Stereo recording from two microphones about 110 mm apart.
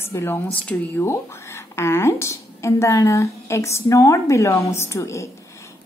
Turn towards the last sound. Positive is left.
turn(degrees=25)  # may be behind; listen again after turning